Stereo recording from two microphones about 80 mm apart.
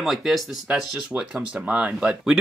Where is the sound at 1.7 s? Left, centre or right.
Centre.